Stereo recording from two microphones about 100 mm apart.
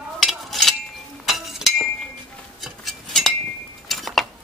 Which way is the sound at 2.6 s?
Centre (ahead or behind).